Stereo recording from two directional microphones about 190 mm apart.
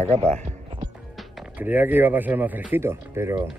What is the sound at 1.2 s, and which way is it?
Speech, 5° right (ahead or behind).